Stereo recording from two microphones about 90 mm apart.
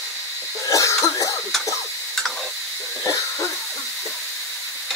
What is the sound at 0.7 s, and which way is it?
Cough, 35° left (ahead or behind).